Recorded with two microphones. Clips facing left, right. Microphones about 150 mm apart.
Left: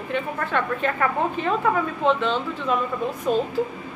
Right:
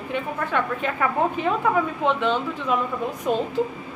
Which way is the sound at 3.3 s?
15° right (ahead or behind).